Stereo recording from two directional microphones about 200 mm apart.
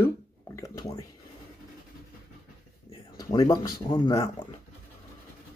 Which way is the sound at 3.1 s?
20° left (ahead or behind).